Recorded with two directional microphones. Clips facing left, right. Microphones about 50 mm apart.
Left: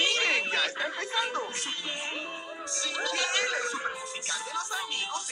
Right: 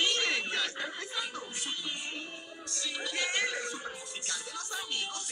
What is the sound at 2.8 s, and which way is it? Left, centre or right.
Music, left.